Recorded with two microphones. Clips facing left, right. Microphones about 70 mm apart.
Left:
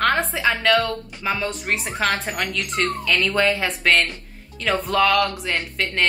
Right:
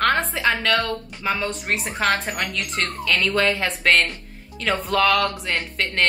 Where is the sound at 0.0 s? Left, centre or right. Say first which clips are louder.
Even; centre.